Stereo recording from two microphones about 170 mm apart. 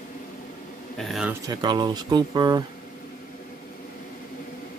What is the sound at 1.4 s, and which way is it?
Speech, 25° right (ahead or behind).